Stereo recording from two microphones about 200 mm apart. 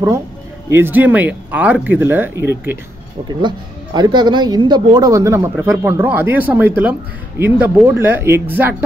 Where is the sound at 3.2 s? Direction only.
20° right (ahead or behind).